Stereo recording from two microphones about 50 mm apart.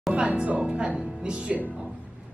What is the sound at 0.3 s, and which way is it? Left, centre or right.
A man's voice, right.